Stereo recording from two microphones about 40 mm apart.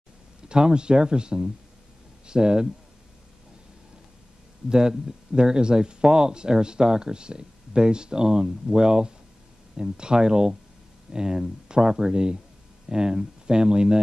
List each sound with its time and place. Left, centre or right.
0.5 s speech: right
4.6 s speech: centre